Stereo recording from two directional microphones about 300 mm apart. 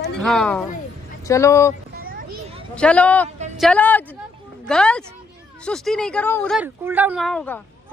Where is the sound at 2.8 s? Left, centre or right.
Centre.